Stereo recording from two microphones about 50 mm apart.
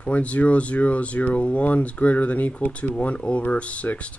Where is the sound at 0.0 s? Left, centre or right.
Left.